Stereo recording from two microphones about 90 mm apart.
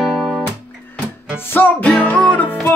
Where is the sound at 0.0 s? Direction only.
5° right (ahead or behind).